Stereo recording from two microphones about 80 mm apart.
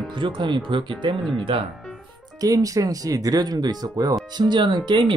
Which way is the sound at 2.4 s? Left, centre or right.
Right.